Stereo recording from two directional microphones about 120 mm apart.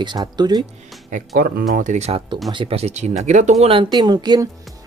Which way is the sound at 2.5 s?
40° right (ahead or behind).